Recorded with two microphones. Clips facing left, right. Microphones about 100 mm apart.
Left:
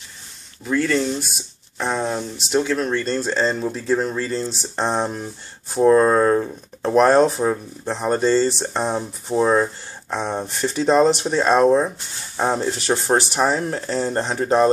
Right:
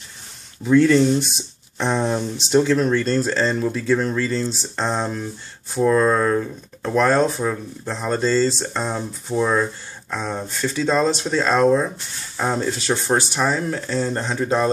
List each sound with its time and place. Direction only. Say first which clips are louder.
0.7 s speech: right 6 dB; centre (ahead or behind); by 14.4 s 25° left (ahead or behind)